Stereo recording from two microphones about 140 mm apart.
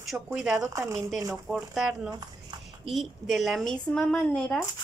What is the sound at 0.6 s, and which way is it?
Speech, 20° right (ahead or behind).